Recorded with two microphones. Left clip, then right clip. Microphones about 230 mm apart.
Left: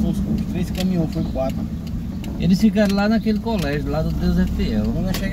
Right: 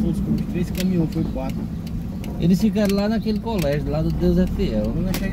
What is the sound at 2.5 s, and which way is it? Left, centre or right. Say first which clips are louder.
Speech: left 3 dB; right.